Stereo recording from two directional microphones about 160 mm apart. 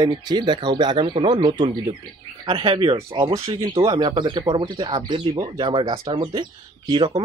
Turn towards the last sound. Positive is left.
turn(degrees=-30)  # may be behind; listen again after turning